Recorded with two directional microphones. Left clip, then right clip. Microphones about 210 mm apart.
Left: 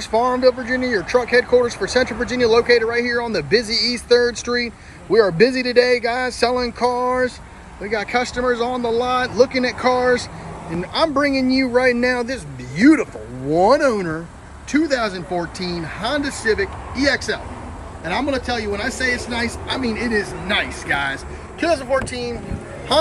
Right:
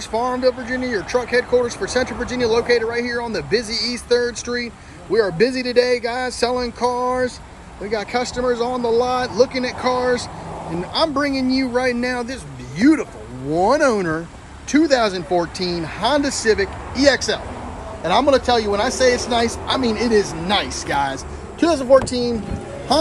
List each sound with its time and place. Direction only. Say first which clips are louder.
0.1 s speech: left 3 dB; centre (ahead or behind); by 22.3 s 25° right (ahead or behind)